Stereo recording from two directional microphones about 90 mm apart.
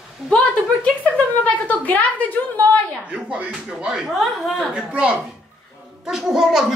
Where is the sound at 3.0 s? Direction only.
15° right (ahead or behind).